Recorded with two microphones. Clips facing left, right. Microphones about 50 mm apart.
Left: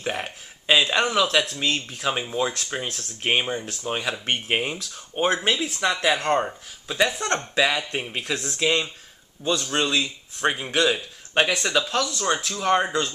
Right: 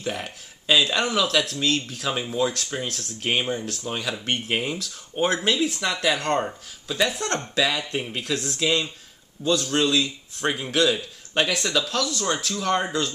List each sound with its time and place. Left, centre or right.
0.0 s speech: left
0.7 s speech: centre